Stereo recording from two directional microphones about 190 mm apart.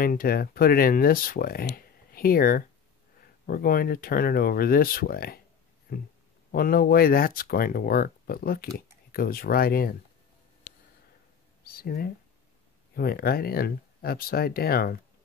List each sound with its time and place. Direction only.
0.0 s speech: 50° left (ahead or behind)
6.5 s speech: 50° left (ahead or behind)
11.6 s speech: 50° left (ahead or behind)